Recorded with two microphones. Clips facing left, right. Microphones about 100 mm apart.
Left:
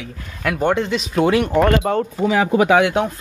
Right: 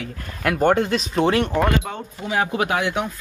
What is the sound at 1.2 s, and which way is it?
Speech, 15° left (ahead or behind).